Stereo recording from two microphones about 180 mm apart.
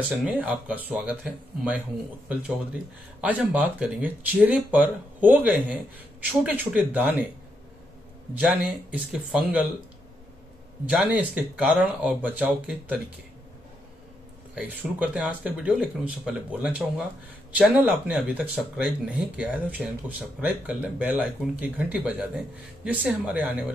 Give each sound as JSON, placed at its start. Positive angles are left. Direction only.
{"t": 0.2, "sound": "speech", "side_deg": -10}
{"t": 3.2, "sound": "speech", "side_deg": -5}
{"t": 8.4, "sound": "speech", "side_deg": -5}
{"t": 10.9, "sound": "speech", "side_deg": -5}
{"t": 14.5, "sound": "speech", "side_deg": -5}